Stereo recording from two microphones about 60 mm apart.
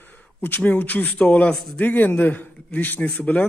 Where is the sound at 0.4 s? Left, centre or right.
Left.